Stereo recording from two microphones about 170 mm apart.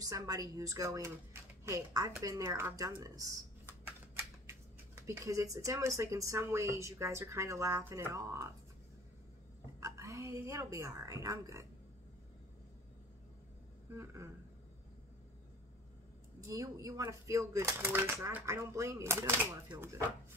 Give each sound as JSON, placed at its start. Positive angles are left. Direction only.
{"t": 0.0, "sound": "speech", "side_deg": -20}
{"t": 9.8, "sound": "speech", "side_deg": -15}
{"t": 13.9, "sound": "speech", "side_deg": -15}
{"t": 16.3, "sound": "speech", "side_deg": -20}